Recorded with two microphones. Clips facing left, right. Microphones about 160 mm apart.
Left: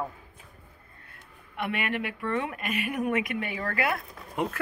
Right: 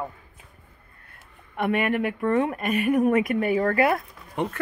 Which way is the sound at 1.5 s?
45° right (ahead or behind).